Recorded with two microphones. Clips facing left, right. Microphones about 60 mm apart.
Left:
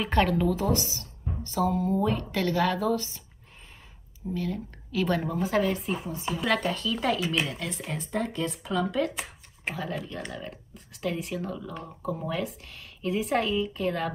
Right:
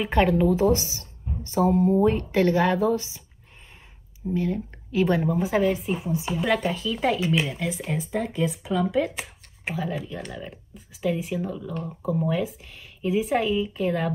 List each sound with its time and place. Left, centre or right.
0.0 s speech: centre
4.3 s speech: right
5.2 s speech: centre